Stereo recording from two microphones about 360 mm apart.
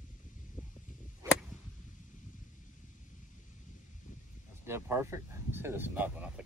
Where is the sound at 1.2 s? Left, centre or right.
Centre.